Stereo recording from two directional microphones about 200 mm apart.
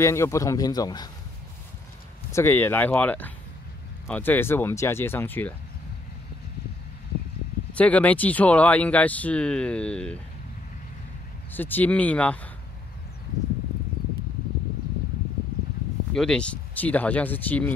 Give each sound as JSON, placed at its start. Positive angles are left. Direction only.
{"t": 0.0, "sound": "speech", "side_deg": 15}
{"t": 2.3, "sound": "speech", "side_deg": 10}
{"t": 7.7, "sound": "speech", "side_deg": 5}
{"t": 11.5, "sound": "speech", "side_deg": 10}
{"t": 16.1, "sound": "speech", "side_deg": 5}